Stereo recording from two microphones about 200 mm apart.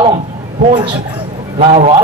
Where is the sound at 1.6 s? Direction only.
30° right (ahead or behind).